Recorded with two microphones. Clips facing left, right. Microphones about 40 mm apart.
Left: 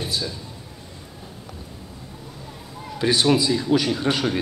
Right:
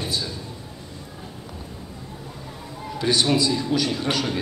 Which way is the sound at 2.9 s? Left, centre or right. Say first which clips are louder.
Left 2 dB; centre.